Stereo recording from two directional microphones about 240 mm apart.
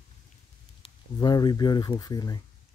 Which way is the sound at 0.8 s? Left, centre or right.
Left.